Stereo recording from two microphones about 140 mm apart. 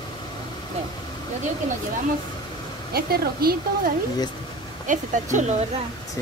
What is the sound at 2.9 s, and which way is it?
Speech, 90° right.